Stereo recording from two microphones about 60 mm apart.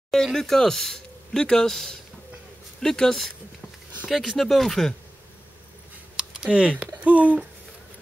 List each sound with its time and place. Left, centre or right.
0.1 s speech: centre
6.1 s a sound: centre
7.0 s speech: right